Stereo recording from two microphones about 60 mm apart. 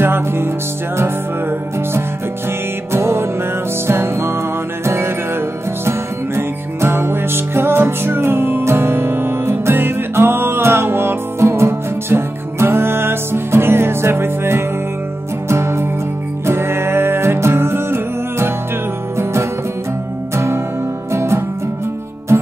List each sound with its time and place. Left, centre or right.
0.0 s music: right
2.9 s music: right
20.3 s music: right